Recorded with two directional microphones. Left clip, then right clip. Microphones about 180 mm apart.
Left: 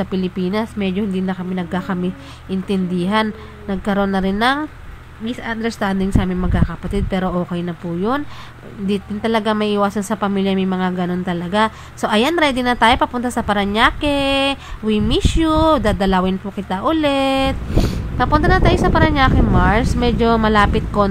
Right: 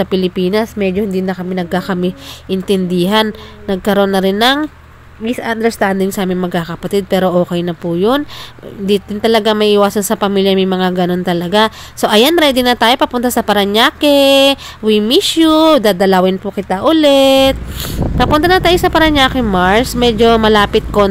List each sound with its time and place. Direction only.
0.0 s a woman's voice: 40° right (ahead or behind)